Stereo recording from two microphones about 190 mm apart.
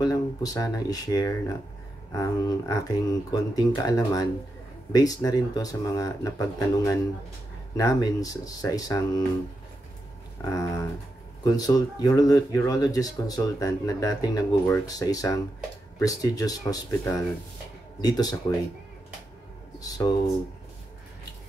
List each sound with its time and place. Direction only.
0.0 s speech: 20° left (ahead or behind)
10.4 s speech: 15° left (ahead or behind)
19.8 s speech: 20° left (ahead or behind)